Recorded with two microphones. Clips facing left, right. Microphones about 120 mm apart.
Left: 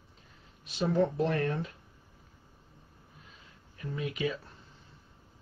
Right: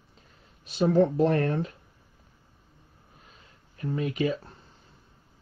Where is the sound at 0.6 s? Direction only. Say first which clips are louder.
Right 6 dB; 40° right (ahead or behind).